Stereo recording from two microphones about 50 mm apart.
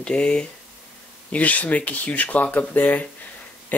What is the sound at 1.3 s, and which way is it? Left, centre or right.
Speech, left.